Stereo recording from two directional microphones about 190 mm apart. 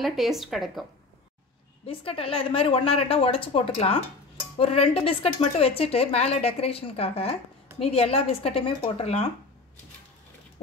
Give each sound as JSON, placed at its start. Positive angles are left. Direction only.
{"t": 0.0, "sound": "speech", "side_deg": 0}
{"t": 1.9, "sound": "a woman's voice", "side_deg": 30}